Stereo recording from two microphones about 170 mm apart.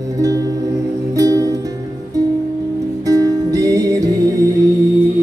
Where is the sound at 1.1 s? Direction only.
20° right (ahead or behind).